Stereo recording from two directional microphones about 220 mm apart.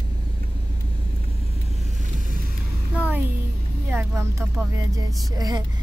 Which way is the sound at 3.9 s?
10° right (ahead or behind).